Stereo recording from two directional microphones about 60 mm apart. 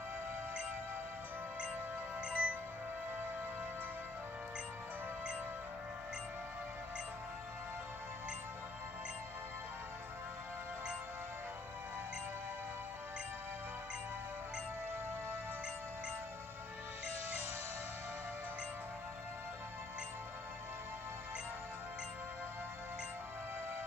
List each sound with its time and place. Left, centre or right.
2.2 s music: right